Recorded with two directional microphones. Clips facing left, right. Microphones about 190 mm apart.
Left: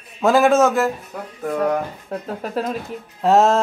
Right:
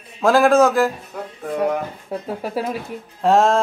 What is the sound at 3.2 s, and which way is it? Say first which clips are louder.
Speech: left 1 dB; centre (ahead or behind).